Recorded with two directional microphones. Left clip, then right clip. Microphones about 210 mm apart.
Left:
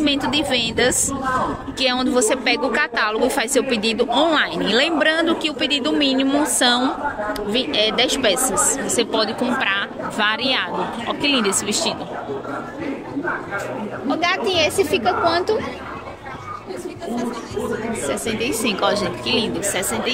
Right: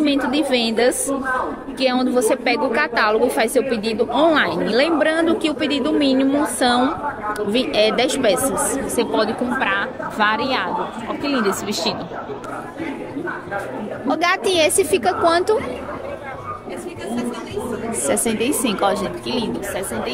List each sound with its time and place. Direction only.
0.0 s a woman's voice: 5° right (ahead or behind)
14.0 s a woman's voice: 35° right (ahead or behind)
18.0 s a woman's voice: 30° right (ahead or behind)
18.6 s speech: 15° right (ahead or behind)